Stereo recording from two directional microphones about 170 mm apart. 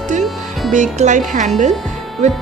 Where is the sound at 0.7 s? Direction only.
45° right (ahead or behind).